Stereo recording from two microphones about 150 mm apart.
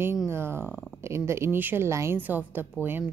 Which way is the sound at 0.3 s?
15° right (ahead or behind).